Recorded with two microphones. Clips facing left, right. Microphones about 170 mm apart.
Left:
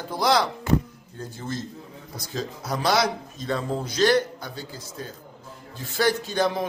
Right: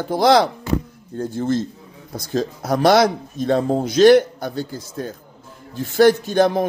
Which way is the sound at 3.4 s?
65° right (ahead or behind).